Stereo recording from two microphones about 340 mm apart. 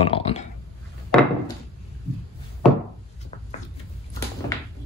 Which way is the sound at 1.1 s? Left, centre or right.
Centre.